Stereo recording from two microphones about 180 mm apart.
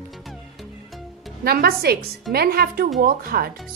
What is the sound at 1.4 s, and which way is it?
A woman's voice, 55° right (ahead or behind).